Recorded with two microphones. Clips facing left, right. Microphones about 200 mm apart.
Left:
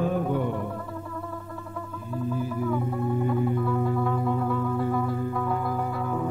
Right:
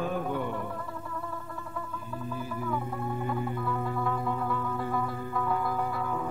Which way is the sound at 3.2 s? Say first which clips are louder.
Left 6 dB; 30° left (ahead or behind).